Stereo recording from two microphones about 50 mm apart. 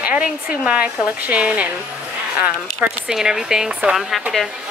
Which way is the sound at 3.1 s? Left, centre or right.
Centre.